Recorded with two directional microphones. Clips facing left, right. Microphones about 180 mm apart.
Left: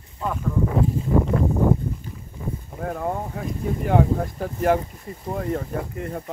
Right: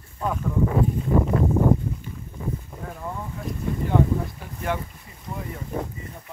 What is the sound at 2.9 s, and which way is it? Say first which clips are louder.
Speech: left 8 dB; 55° left (ahead or behind).